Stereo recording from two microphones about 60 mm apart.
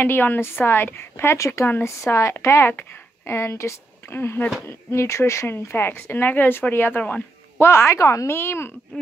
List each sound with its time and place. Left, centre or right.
0.0 s a woman's voice: left
2.7 s speech: left
4.6 s a woman's voice: left
7.0 s a sound: left
7.6 s speech: left
8.3 s speech: left